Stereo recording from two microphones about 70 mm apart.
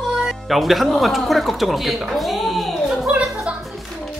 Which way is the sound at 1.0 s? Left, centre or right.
Centre.